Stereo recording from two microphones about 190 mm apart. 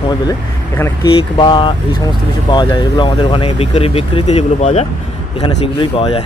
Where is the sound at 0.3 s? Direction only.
10° left (ahead or behind).